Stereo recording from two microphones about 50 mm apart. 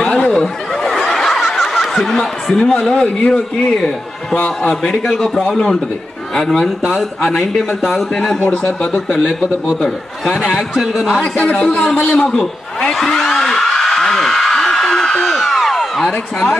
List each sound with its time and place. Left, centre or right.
0.0 s a sound: centre
0.3 s snicker: centre
1.6 s a man's voice: centre
4.9 s a man's voice: centre
8.5 s a man's voice: left
10.8 s a man's voice: centre
11.5 s a man's voice: centre
13.0 s a sound: centre